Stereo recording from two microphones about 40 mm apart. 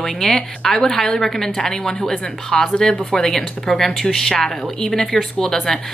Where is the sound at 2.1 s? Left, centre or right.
Left.